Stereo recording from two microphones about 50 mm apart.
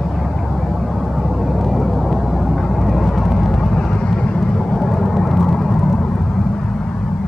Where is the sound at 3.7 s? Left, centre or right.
Centre.